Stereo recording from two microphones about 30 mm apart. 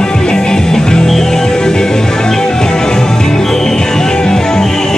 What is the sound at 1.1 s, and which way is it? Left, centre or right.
Music, centre.